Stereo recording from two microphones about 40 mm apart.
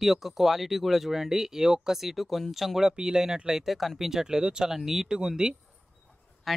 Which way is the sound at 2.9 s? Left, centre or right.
Centre.